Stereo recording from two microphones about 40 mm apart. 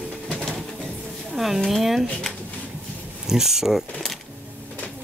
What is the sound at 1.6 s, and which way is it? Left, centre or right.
Speech, centre.